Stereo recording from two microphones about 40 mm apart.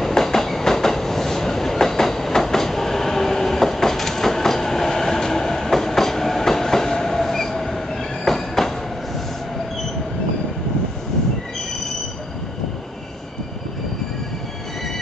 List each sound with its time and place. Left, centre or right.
0.0 s train: centre